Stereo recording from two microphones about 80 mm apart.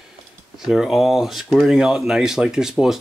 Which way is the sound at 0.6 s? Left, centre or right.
Centre.